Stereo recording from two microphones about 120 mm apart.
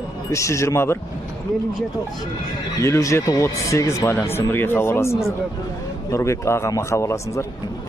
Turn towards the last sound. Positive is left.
turn(degrees=25)  # may be behind; listen again after turning